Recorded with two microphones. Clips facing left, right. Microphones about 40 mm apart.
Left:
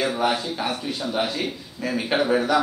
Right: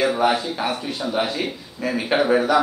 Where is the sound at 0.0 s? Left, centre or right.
Centre.